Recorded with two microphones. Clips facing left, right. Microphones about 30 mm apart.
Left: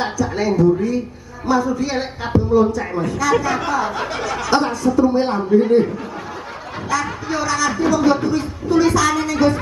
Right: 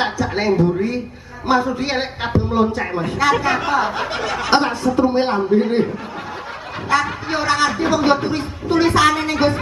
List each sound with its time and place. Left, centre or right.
0.0 s a woman's voice: right
6.9 s a man's voice: right